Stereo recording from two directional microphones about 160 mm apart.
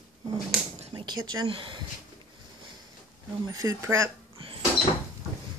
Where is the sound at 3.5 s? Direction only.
20° right (ahead or behind).